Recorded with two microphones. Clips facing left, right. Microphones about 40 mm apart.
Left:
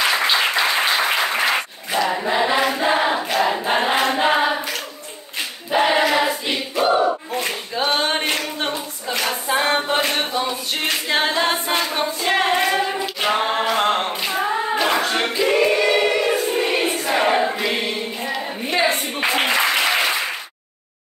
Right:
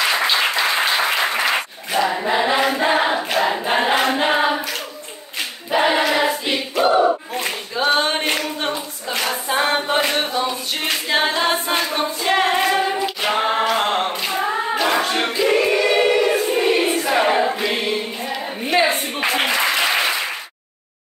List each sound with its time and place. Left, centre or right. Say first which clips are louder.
0.1 s applause: even; centre
2.0 s choir: even; centre
4.1 s hands: even; centre
5.7 s choir: even; centre
6.8 s battle cry: right 2 dB; centre
9.1 s hands: even; centre
9.5 s a capella: even; centre
9.8 s mantra: right 1 dB; centre
10.3 s a capella: right 1 dB; centre
11.8 s choir: even; centre
13.2 s singing: even; centre
18.7 s a sound: right 2 dB; centre
19.6 s applause: even; centre